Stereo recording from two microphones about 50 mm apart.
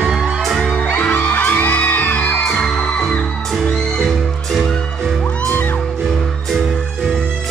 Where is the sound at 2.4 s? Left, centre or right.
Left.